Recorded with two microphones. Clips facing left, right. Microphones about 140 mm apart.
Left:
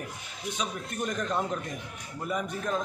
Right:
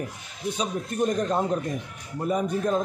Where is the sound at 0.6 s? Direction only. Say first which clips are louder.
Right 7 dB; 35° right (ahead or behind).